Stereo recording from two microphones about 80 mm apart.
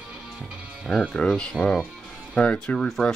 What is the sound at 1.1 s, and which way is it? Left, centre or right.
Speech, centre.